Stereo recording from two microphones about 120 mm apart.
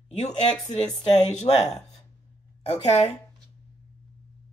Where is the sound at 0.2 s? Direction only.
70° left (ahead or behind).